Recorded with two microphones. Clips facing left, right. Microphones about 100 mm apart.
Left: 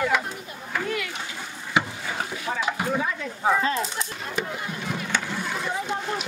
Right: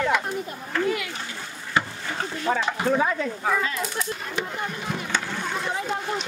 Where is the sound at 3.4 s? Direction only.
20° left (ahead or behind).